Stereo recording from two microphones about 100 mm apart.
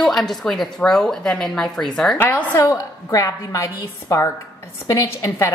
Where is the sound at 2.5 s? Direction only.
30° left (ahead or behind).